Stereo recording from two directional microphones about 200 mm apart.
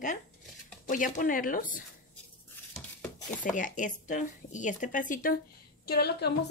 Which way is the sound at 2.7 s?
10° left (ahead or behind).